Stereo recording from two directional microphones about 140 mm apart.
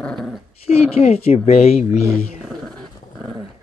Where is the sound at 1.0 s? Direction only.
50° left (ahead or behind).